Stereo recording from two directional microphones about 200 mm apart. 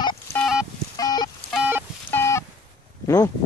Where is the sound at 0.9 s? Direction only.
20° left (ahead or behind).